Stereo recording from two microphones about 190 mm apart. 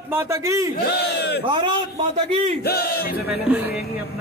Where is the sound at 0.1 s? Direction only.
15° right (ahead or behind).